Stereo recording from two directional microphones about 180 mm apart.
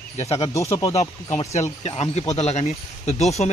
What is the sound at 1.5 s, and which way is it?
Speech, 40° left (ahead or behind).